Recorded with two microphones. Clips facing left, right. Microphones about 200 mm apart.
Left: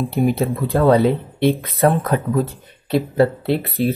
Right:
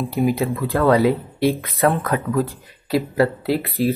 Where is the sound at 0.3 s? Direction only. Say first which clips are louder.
Left 2 dB; 25° left (ahead or behind).